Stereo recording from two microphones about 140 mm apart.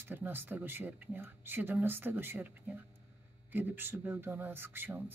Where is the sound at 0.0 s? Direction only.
15° right (ahead or behind).